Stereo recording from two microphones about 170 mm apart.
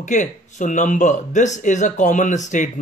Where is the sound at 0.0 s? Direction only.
45° left (ahead or behind).